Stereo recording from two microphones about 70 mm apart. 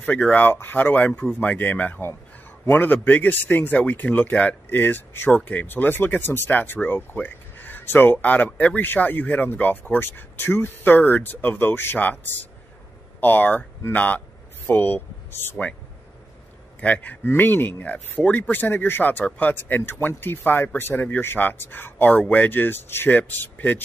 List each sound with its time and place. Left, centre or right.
0.0 s speech: centre
16.8 s speech: left